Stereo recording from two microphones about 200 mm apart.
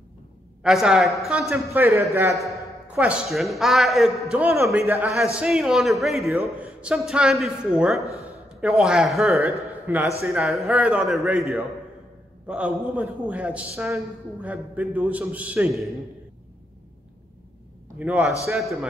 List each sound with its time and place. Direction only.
0.6 s a man's voice: centre (ahead or behind)
1.7 s a man's voice: 15° right (ahead or behind)
2.3 s a man's voice: centre (ahead or behind)
5.4 s a man's voice: centre (ahead or behind)
17.9 s a man's voice: 5° right (ahead or behind)